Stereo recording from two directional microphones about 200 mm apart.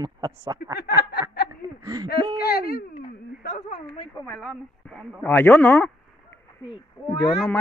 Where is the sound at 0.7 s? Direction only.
55° left (ahead or behind).